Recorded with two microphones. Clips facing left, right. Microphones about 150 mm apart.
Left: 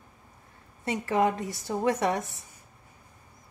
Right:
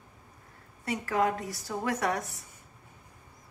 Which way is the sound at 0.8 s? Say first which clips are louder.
Left 3 dB; 20° left (ahead or behind).